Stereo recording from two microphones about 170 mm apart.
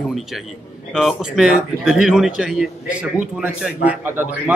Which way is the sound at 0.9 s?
Centre (ahead or behind).